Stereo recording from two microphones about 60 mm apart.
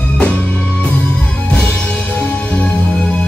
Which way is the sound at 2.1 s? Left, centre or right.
Left.